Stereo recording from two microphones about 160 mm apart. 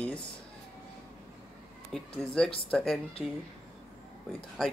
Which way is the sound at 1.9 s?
5° left (ahead or behind).